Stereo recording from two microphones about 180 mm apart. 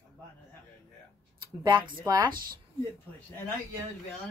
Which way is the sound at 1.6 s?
25° right (ahead or behind).